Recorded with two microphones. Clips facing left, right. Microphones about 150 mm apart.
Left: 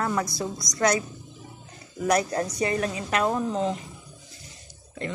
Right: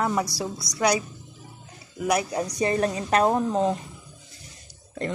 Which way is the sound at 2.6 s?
35° right (ahead or behind).